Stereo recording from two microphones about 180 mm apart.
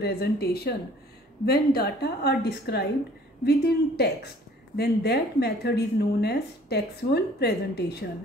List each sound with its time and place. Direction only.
0.0 s a woman's voice: 60° left (ahead or behind)